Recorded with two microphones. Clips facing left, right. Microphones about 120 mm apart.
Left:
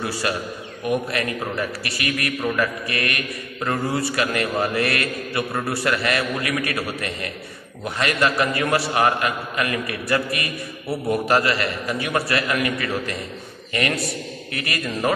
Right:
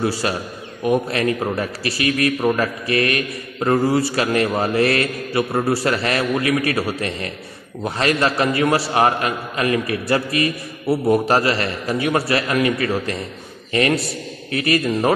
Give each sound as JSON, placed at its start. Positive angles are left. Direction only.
{"t": 0.2, "sound": "a man's voice", "side_deg": -25}
{"t": 14.5, "sound": "a man's voice", "side_deg": -30}